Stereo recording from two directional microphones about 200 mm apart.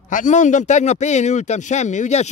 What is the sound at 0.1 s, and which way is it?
A man's voice, 40° left (ahead or behind).